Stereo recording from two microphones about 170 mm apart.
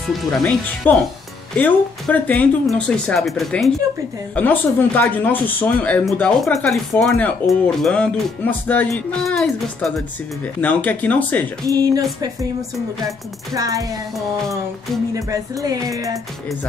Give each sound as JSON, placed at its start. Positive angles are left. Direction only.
{"t": 0.3, "sound": "speech", "side_deg": 5}
{"t": 11.6, "sound": "music", "side_deg": -20}
{"t": 13.6, "sound": "music", "side_deg": -20}
{"t": 15.1, "sound": "music", "side_deg": -20}